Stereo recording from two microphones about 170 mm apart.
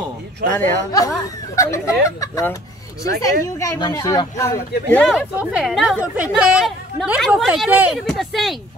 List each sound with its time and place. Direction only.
0.5 s speech: 15° left (ahead or behind)
5.1 s speech: 5° right (ahead or behind)